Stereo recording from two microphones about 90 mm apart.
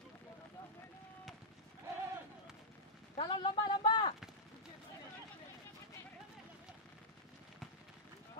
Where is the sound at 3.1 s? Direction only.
60° left (ahead or behind).